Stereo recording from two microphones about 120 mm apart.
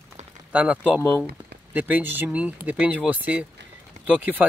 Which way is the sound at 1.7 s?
15° right (ahead or behind).